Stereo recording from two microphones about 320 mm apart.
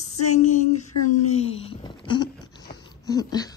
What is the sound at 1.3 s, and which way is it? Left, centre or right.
Speech, centre.